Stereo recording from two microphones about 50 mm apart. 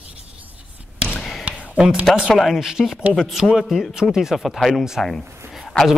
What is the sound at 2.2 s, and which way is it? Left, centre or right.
Speech, centre.